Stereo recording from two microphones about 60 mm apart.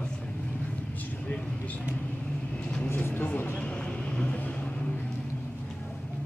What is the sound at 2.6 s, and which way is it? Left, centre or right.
Vehicle, centre.